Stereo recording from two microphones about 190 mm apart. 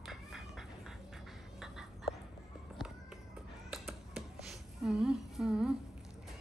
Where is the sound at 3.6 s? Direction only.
Centre (ahead or behind).